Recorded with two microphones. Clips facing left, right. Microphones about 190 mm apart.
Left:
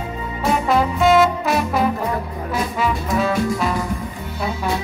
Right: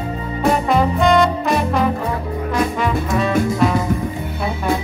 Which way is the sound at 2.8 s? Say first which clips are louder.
Right 1 dB; centre (ahead or behind).